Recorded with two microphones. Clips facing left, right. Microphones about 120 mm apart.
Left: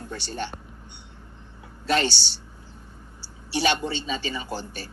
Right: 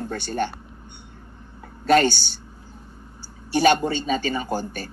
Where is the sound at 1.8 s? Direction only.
50° right (ahead or behind).